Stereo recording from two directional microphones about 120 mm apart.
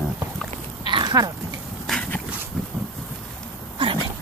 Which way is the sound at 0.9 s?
35° right (ahead or behind).